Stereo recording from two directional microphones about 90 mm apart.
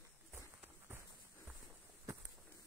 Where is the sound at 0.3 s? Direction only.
20° right (ahead or behind).